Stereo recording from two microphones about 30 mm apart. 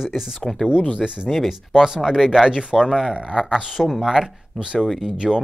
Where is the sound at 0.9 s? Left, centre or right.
Right.